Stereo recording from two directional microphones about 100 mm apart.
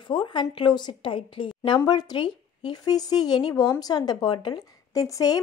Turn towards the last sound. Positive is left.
turn(degrees=35)  # may be behind; listen again after turning